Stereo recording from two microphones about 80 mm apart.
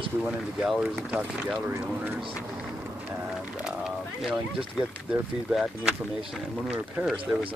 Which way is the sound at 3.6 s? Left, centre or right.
Centre.